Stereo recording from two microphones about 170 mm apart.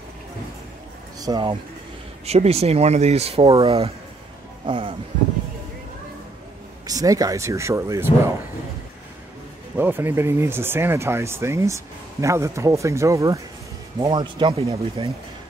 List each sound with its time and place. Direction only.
1.2 s speech: 25° right (ahead or behind)
2.2 s speech: 40° right (ahead or behind)
6.9 s speech: 20° right (ahead or behind)
9.8 s speech: 10° right (ahead or behind)
14.2 s speech: 30° right (ahead or behind)